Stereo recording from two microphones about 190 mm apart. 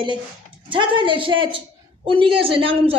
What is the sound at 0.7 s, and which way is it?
A man's voice, 25° right (ahead or behind).